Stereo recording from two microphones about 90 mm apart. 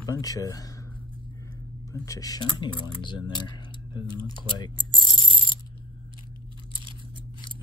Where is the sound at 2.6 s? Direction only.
60° left (ahead or behind).